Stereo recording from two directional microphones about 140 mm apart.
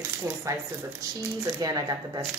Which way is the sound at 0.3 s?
20° right (ahead or behind).